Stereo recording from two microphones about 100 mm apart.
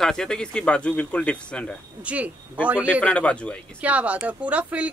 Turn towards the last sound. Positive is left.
turn(degrees=-10)  # may be behind; listen again after turning